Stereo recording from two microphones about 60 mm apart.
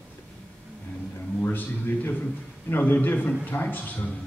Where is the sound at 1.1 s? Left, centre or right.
Left.